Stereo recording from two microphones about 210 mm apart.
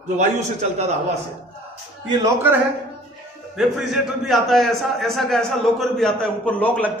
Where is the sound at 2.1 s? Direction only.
10° right (ahead or behind).